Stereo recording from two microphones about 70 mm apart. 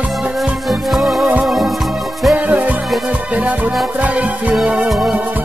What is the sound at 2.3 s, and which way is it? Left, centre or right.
Music, right.